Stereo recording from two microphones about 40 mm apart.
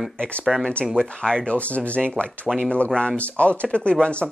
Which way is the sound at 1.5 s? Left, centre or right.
Left.